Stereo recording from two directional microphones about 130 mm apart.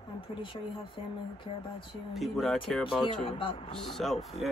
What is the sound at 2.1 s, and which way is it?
Speech, centre (ahead or behind).